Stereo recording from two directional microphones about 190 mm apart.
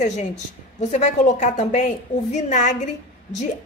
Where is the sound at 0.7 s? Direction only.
35° left (ahead or behind).